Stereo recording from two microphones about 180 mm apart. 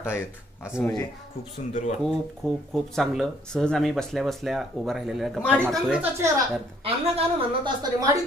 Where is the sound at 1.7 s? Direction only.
45° left (ahead or behind).